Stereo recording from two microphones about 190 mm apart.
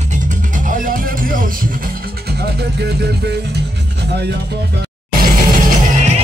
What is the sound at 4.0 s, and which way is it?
Speech, 60° right (ahead or behind).